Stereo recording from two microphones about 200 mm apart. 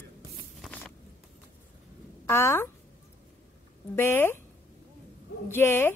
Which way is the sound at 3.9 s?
10° left (ahead or behind).